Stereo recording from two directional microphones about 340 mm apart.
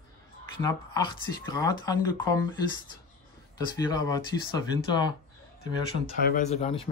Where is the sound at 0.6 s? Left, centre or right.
Centre.